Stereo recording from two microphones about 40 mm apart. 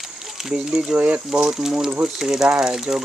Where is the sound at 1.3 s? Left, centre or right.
Centre.